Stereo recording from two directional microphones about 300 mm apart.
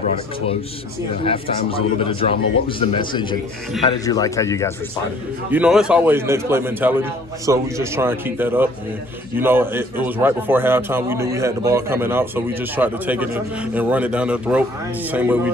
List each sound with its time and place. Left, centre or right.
1.2 s a man's voice: centre
5.5 s a man's voice: centre